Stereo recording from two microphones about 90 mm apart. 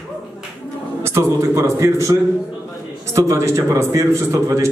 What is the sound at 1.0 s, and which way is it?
A man's voice, 30° right (ahead or behind).